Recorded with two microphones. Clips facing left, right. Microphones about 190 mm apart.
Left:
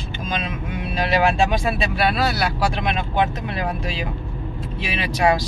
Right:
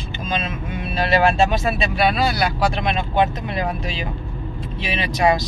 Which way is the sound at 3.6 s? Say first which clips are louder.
Right 1 dB; 10° left (ahead or behind).